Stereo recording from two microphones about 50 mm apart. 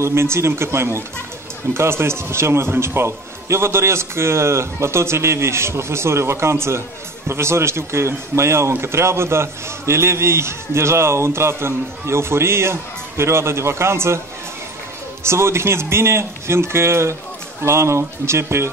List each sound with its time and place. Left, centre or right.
0.0 s a man's voice: right
15.2 s a man's voice: right